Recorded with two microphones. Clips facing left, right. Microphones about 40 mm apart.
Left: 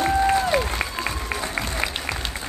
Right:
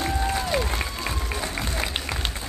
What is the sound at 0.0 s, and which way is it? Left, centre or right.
Applause, centre.